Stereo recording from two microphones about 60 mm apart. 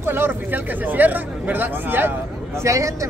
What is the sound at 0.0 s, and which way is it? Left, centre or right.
Speech, right.